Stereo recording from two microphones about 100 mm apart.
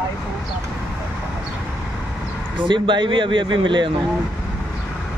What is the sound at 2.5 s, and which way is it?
A man's voice, 55° right (ahead or behind).